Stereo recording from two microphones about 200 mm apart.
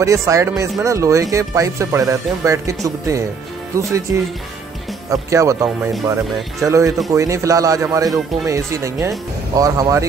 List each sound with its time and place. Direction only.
0.0 s speech: 15° right (ahead or behind)